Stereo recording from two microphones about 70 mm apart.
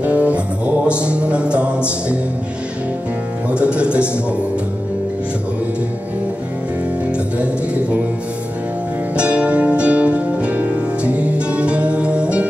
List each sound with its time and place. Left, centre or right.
0.0 s music: right
3.4 s music: centre
7.1 s music: centre
9.1 s music: centre